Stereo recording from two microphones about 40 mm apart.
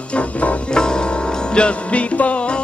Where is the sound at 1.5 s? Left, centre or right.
Left.